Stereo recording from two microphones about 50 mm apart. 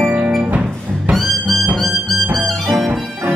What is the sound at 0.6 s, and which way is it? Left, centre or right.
Music, centre.